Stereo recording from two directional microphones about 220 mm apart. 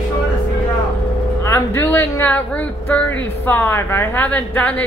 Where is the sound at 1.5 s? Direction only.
10° left (ahead or behind).